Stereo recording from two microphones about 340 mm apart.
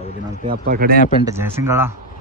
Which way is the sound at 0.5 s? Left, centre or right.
Right.